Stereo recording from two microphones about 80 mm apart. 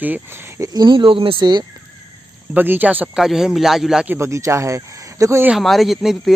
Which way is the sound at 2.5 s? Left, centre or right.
Right.